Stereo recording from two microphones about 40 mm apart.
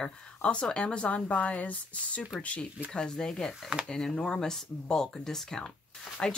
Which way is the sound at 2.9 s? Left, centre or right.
Centre.